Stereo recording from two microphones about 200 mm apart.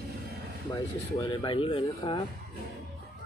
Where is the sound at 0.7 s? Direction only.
20° left (ahead or behind).